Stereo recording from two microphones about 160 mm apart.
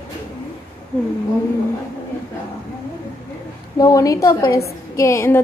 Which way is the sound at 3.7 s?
20° left (ahead or behind).